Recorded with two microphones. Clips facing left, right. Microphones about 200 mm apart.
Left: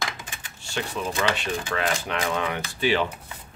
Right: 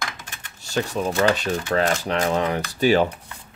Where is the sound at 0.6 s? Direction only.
40° right (ahead or behind).